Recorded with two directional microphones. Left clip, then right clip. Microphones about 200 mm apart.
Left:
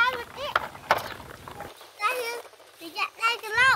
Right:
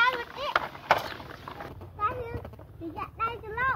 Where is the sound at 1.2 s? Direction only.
45° left (ahead or behind).